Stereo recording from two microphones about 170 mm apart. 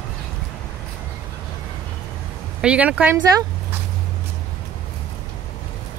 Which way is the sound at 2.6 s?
5° right (ahead or behind).